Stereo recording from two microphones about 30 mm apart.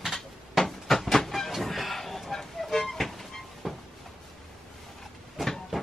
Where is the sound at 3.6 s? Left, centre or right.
Centre.